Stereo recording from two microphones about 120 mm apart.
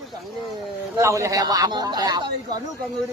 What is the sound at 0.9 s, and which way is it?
Speech, 25° right (ahead or behind).